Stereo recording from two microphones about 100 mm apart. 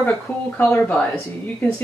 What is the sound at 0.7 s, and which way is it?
Speech, 10° left (ahead or behind).